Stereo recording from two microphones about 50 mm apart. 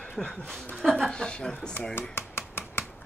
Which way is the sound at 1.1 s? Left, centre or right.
Centre.